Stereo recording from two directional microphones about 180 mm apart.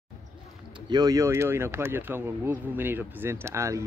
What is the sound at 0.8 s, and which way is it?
Speech, 20° right (ahead or behind).